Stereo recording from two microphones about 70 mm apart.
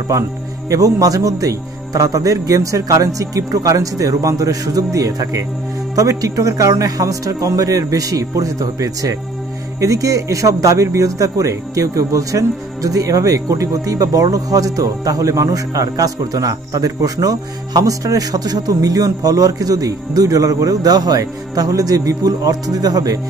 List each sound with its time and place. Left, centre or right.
0.1 s a man's voice: right